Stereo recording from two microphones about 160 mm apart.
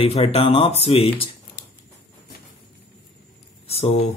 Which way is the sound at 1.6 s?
90° left.